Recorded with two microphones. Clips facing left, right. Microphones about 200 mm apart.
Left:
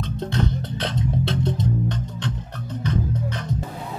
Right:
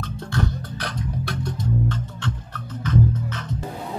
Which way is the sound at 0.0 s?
20° left (ahead or behind).